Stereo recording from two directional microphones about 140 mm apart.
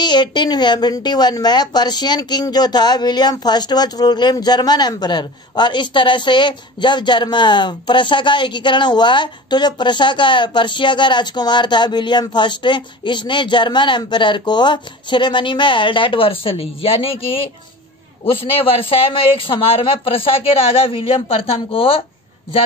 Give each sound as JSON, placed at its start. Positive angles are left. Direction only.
{"t": 0.0, "sound": "a woman's voice", "side_deg": 30}